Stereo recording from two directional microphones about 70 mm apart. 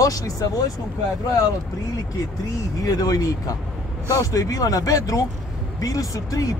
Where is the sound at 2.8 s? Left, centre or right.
Left.